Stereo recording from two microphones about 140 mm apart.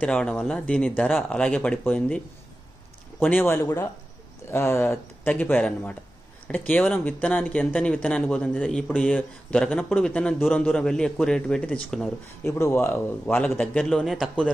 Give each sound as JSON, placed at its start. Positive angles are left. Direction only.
{"t": 0.0, "sound": "speech", "side_deg": 5}
{"t": 12.4, "sound": "speech", "side_deg": 20}